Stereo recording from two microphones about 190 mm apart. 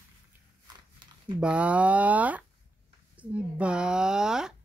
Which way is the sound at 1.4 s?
5° right (ahead or behind).